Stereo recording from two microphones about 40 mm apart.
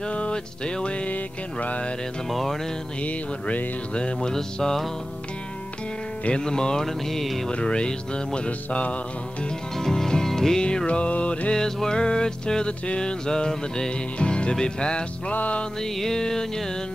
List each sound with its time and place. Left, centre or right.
0.1 s music: left
1.1 s music: left
2.2 s music: centre
3.0 s music: left
4.3 s music: centre
6.4 s music: centre
7.5 s music: left
8.5 s music: left
9.8 s music: centre
10.6 s music: left
11.5 s music: centre
15.3 s music: left
15.8 s music: centre